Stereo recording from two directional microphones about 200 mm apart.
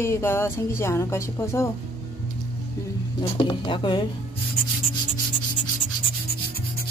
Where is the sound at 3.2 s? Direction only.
25° left (ahead or behind).